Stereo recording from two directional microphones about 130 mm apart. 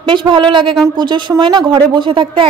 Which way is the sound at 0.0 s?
40° right (ahead or behind).